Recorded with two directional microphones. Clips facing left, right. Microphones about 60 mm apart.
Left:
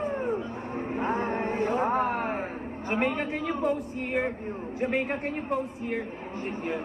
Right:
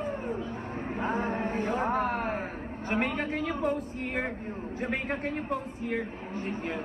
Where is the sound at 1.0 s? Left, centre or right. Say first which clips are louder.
Left 1 dB; left.